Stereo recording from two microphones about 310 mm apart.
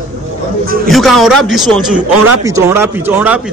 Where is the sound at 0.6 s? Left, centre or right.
Right.